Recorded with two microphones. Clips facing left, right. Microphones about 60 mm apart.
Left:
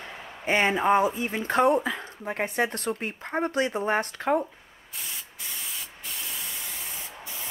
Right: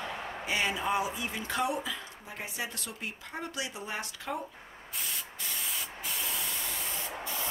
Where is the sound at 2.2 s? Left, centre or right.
Left.